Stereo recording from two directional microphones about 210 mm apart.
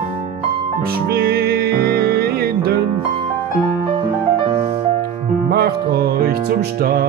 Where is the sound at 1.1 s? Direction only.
45° right (ahead or behind).